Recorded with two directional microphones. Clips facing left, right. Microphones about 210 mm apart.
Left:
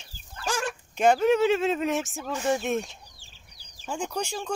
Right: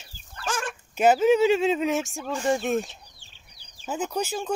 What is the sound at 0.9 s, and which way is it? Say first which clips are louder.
Speech: right 2 dB; 5° right (ahead or behind).